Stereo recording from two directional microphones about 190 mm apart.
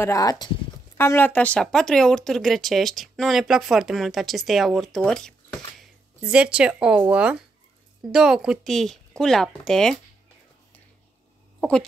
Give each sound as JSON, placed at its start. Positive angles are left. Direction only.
{"t": 0.0, "sound": "speech", "side_deg": 20}